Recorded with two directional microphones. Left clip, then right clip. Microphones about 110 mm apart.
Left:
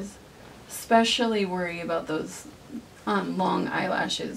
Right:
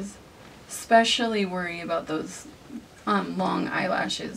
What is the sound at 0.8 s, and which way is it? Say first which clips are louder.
A woman's voice: right 2 dB; 10° right (ahead or behind).